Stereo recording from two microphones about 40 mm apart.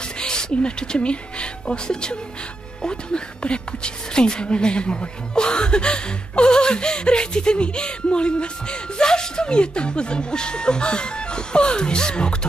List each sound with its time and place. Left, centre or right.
0.2 s a woman's voice: left